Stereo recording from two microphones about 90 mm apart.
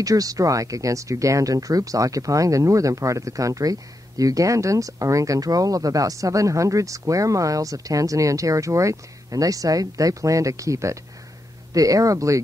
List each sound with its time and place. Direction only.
0.0 s speech: 40° right (ahead or behind)